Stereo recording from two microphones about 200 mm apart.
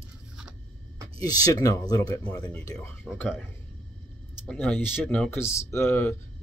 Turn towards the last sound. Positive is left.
turn(degrees=10)  # may be behind; listen again after turning